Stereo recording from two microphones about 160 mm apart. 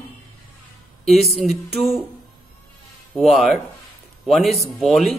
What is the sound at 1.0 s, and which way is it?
A man's voice, centre (ahead or behind).